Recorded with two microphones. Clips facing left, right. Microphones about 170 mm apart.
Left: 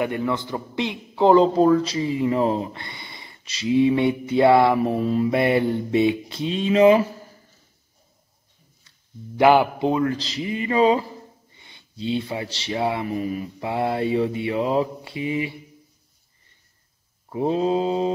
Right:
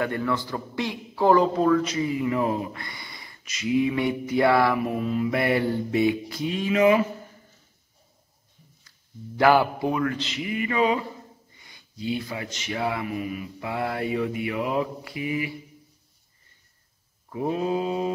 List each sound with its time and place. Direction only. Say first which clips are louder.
0.0 s a man's voice: left 2 dB; 20° left (ahead or behind)
9.4 s a man's voice: left 3 dB; 20° left (ahead or behind)
17.3 s a man's voice: left 4 dB; 25° left (ahead or behind)